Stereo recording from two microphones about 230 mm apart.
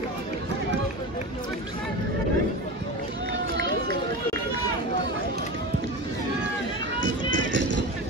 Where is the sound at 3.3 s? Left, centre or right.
Right.